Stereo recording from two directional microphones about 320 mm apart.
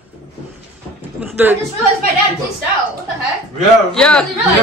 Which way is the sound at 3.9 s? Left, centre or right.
Centre.